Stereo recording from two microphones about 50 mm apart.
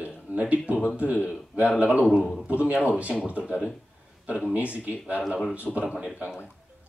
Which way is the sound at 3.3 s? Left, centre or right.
Left.